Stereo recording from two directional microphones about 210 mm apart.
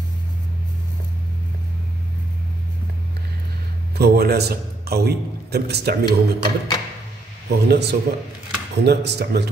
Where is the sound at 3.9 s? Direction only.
50° right (ahead or behind).